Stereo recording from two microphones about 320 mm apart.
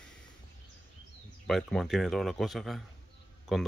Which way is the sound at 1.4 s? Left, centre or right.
Centre.